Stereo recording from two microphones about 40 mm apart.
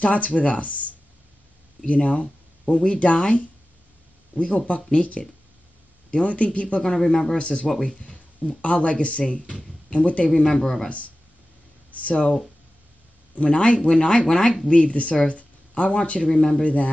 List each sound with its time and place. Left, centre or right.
0.0 s speech: left
4.9 s speech: left
6.8 s speech: centre
7.3 s speech: left
10.3 s speech: centre
11.9 s speech: left
13.3 s speech: left
14.7 s speech: left
16.2 s speech: centre
16.6 s speech: left